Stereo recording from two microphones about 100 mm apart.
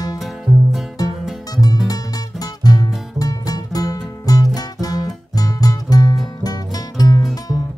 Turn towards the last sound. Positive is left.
turn(degrees=40)  # may be behind; listen again after turning